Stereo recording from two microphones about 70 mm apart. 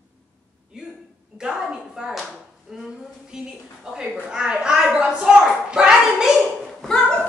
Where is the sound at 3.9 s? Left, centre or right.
Centre.